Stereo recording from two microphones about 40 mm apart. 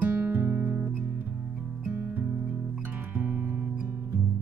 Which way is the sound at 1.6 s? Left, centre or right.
Right.